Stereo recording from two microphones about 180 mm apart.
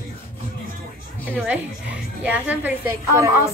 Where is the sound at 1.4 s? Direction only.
5° right (ahead or behind).